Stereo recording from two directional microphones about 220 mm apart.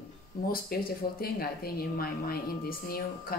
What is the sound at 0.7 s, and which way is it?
Speech, 45° left (ahead or behind).